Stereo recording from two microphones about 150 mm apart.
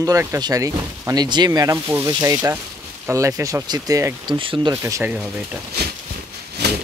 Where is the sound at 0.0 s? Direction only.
20° right (ahead or behind).